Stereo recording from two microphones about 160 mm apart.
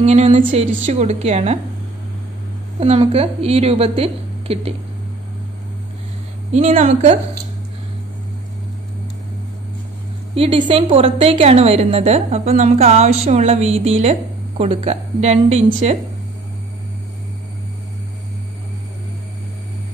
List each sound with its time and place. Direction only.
0.0 s a woman's voice: 40° right (ahead or behind)
2.8 s a woman's voice: 40° right (ahead or behind)
6.5 s a woman's voice: 45° right (ahead or behind)
10.3 s a woman's voice: 35° right (ahead or behind)